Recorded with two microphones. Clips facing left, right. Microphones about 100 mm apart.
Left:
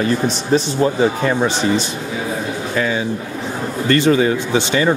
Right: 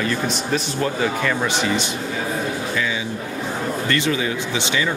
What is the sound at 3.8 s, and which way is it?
Speech, 40° left (ahead or behind).